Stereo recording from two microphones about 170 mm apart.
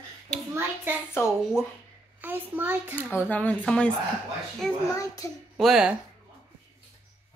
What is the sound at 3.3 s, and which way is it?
Speech, 10° left (ahead or behind).